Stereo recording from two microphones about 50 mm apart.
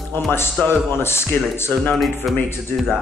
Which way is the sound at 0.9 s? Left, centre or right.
Left.